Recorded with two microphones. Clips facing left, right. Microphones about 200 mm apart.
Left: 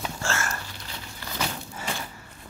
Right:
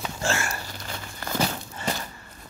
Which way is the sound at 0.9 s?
50° right (ahead or behind).